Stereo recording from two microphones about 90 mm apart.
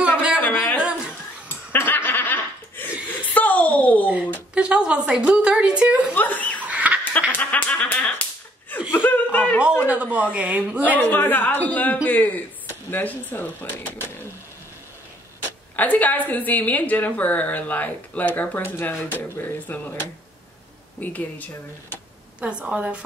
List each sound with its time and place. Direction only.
0.4 s a sound: 20° left (ahead or behind)
0.7 s a sound: 10° right (ahead or behind)
1.7 s laughter: 25° left (ahead or behind)
4.6 s a woman's voice: 10° right (ahead or behind)
6.1 s chuckle: 15° left (ahead or behind)
6.6 s fowl: 15° right (ahead or behind)
7.3 s music: 20° left (ahead or behind)
8.9 s laughter: 20° left (ahead or behind)
9.8 s a woman's voice: 15° right (ahead or behind)
11.0 s a woman's voice: 20° left (ahead or behind)
15.7 s a woman's voice: 20° left (ahead or behind)
22.4 s a woman's voice: 15° right (ahead or behind)